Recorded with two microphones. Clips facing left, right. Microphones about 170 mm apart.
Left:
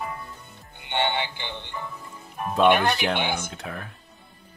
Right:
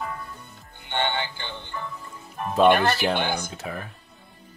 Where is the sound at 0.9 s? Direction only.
15° left (ahead or behind).